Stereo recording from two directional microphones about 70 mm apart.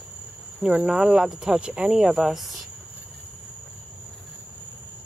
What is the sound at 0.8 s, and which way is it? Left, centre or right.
Speech, centre.